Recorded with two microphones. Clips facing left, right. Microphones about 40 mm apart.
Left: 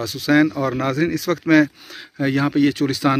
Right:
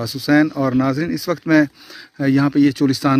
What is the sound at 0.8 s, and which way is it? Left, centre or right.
Speech, left.